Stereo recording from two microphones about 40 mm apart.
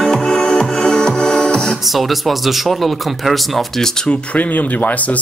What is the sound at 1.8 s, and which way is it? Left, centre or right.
Speech, centre.